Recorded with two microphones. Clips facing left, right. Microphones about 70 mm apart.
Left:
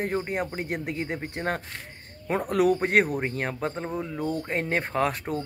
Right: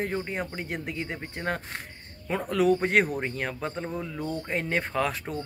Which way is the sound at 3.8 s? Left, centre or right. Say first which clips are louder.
Left 2 dB; centre.